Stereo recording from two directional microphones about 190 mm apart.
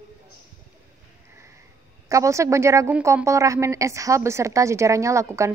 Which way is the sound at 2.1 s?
15° right (ahead or behind).